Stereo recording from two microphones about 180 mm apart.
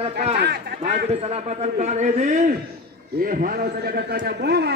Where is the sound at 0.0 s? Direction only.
35° right (ahead or behind).